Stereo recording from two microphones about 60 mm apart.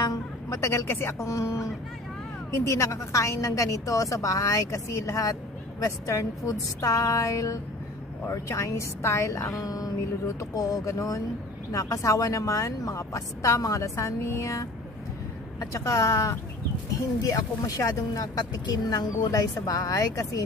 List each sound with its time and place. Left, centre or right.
0.5 s a woman's voice: left
10.4 s a woman's voice: left
17.3 s speech: left